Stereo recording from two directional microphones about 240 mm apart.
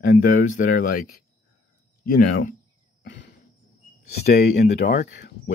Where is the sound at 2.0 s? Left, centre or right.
Left.